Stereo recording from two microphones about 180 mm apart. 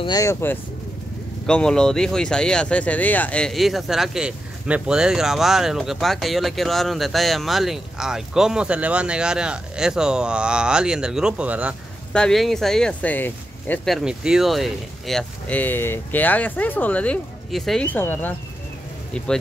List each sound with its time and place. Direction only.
0.0 s speech: 20° left (ahead or behind); by 11.7 s 5° right (ahead or behind)
12.1 s speech: 5° left (ahead or behind)